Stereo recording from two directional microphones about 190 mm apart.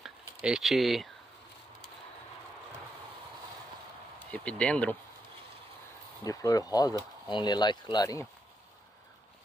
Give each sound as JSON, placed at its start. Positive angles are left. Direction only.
{"t": 0.0, "sound": "a sound", "side_deg": 0}
{"t": 4.3, "sound": "speech", "side_deg": 5}
{"t": 6.2, "sound": "speech", "side_deg": 20}